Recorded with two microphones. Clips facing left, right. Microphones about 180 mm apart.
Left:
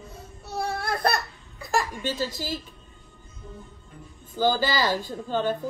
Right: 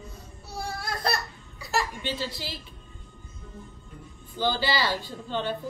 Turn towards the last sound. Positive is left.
turn(degrees=45)  # may be behind; listen again after turning